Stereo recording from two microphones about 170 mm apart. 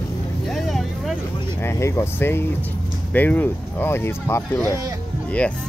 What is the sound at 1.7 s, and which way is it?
Speech, 15° left (ahead or behind).